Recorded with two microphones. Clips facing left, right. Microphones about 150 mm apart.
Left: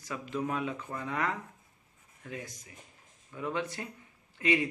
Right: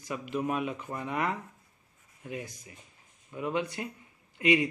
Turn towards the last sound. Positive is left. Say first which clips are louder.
# right 3 dB
turn(degrees=-15)  # may be behind; listen again after turning